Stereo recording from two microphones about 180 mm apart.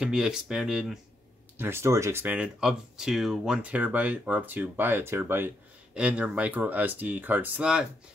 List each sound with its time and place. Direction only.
0.0 s speech: 5° right (ahead or behind)
1.6 s speech: 15° right (ahead or behind)